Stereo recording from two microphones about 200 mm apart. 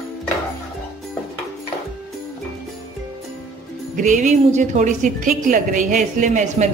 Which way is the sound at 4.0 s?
40° right (ahead or behind).